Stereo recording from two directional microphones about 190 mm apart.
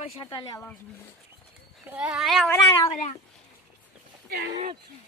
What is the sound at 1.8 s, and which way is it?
Speech, 5° right (ahead or behind).